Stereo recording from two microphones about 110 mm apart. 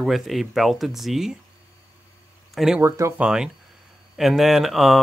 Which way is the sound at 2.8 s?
25° right (ahead or behind).